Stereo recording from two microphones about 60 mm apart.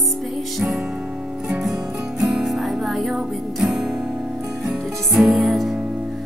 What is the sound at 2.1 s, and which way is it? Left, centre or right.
Music, centre.